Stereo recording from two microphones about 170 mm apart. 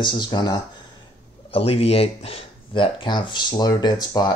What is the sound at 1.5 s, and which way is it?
Speech, 35° left (ahead or behind).